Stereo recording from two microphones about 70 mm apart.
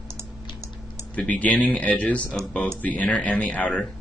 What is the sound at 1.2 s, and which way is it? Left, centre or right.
Speech, left.